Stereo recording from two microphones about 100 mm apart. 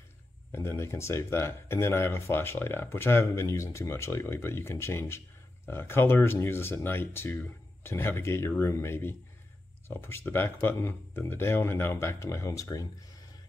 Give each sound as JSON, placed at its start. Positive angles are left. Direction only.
{"t": 0.5, "sound": "speech", "side_deg": 25}